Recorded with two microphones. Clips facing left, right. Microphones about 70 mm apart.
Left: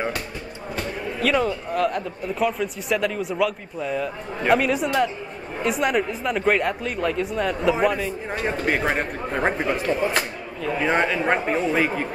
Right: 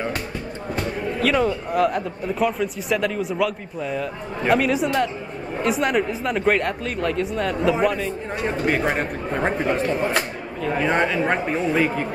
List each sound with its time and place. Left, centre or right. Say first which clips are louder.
1.2 s speech: right 1 dB; centre